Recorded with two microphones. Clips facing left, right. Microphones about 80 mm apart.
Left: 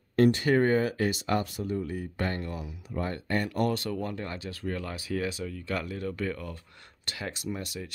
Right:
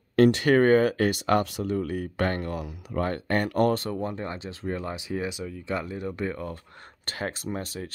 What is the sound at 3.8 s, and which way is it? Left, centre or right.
Speech, right.